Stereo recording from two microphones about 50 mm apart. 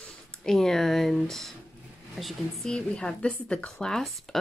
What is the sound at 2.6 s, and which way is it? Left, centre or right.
Speech, centre.